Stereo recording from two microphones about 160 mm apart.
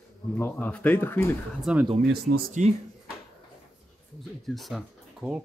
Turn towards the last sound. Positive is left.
turn(degrees=0)  # may be behind; listen again after turning